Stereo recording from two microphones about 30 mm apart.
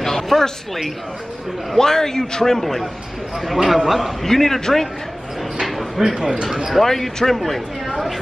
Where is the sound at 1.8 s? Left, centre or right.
Centre.